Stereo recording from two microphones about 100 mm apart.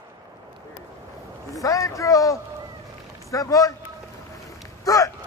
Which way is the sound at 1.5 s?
35° left (ahead or behind).